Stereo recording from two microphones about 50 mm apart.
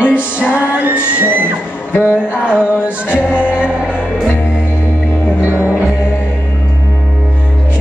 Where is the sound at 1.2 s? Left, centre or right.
Right.